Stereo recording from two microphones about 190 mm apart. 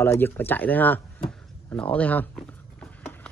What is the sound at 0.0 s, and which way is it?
Speech, 10° left (ahead or behind).